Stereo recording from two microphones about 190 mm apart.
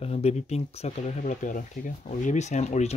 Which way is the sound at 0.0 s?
35° left (ahead or behind).